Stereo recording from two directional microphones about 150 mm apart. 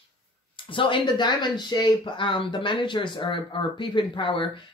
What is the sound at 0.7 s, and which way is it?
Speech, 35° left (ahead or behind).